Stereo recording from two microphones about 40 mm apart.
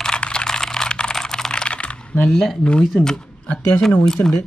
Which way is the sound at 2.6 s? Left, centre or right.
Left.